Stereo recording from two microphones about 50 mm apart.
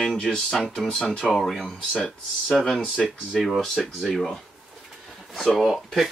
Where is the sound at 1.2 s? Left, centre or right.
Centre.